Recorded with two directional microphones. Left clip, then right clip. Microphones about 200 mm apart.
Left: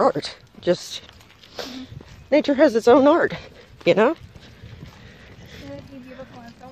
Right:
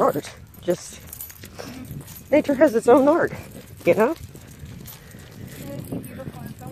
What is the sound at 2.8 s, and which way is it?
Speech, 30° left (ahead or behind).